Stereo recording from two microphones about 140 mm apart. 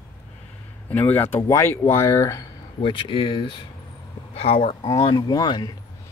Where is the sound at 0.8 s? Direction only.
15° left (ahead or behind).